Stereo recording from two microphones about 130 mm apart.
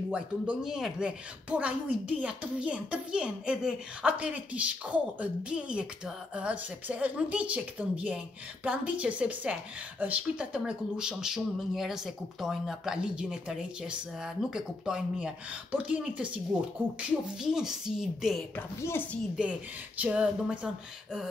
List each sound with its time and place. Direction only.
0.1 s speech: 5° right (ahead or behind)
17.4 s a woman's voice: 5° right (ahead or behind)
18.8 s speech: 20° left (ahead or behind)
20.0 s speech: 10° right (ahead or behind)